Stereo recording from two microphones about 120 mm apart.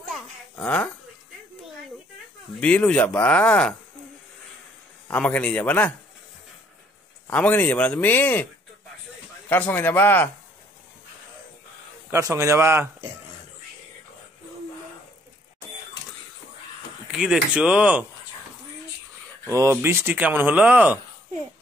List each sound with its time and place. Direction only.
0.1 s a sound: 10° left (ahead or behind)
2.6 s speech: 10° left (ahead or behind)
5.0 s speech: 10° left (ahead or behind)
7.2 s speech: 10° left (ahead or behind)
9.5 s speech: 15° left (ahead or behind)
12.1 s a man's voice: 25° right (ahead or behind)
17.1 s speech: 5° right (ahead or behind)
19.5 s speech: 25° right (ahead or behind)